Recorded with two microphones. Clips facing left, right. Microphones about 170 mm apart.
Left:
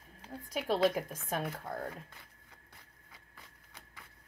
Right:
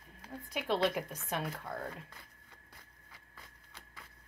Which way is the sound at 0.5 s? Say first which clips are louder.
Left 2 dB; 45° left (ahead or behind).